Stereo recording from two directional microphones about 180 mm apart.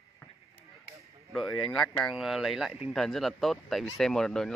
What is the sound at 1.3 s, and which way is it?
Speech, centre (ahead or behind).